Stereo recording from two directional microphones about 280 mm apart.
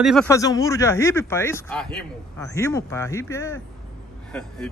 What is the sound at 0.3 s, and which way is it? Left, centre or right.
Speech, centre.